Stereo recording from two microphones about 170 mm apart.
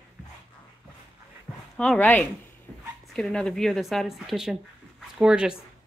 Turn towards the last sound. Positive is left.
turn(degrees=-5)  # may be behind; listen again after turning